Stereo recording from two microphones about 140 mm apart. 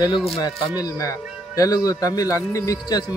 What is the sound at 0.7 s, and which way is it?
Speech, 25° left (ahead or behind).